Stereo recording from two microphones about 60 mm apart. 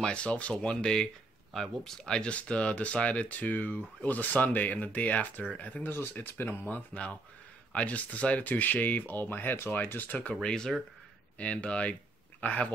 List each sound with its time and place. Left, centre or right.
0.0 s speech: centre
10.4 s speech: centre